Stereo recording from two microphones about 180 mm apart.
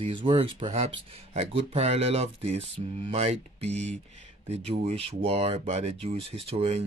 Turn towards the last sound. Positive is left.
turn(degrees=-35)  # may be behind; listen again after turning